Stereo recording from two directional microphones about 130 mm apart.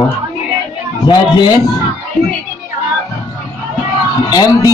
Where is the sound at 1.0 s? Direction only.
35° left (ahead or behind).